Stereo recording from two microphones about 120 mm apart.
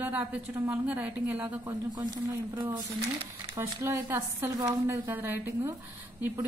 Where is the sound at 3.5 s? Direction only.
20° right (ahead or behind).